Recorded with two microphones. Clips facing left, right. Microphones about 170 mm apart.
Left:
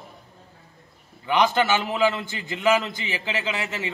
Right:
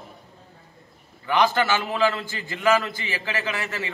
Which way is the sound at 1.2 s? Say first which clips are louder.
Even; 20° left (ahead or behind).